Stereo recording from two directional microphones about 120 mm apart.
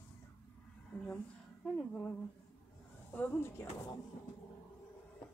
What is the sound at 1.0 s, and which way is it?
A woman's voice, 10° left (ahead or behind).